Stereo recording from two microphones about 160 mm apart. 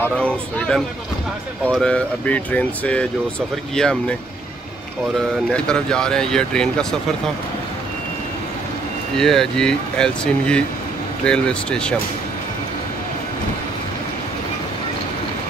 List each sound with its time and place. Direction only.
0.0 s speech: 5° left (ahead or behind)
5.5 s speech: 5° left (ahead or behind)
9.1 s speech: 5° left (ahead or behind)